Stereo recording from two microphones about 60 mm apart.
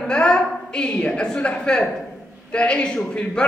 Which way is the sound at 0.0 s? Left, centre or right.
Centre.